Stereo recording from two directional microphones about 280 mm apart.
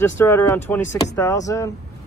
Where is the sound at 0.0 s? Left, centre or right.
Centre.